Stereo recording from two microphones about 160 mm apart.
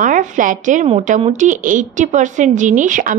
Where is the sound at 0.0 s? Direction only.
55° right (ahead or behind).